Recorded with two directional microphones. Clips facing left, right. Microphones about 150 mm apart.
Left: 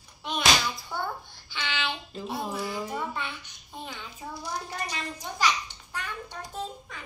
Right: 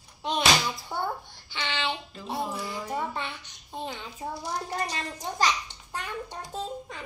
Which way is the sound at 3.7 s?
30° right (ahead or behind).